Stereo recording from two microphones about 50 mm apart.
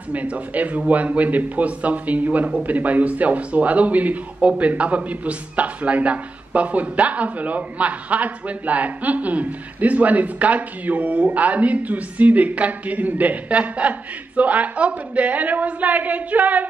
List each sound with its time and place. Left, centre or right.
0.1 s a man's voice: right